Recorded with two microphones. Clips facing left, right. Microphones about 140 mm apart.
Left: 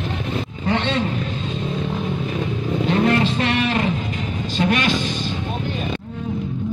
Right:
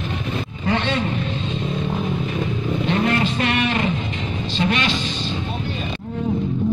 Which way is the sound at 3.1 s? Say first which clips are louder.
Left 2 dB; 35° left (ahead or behind).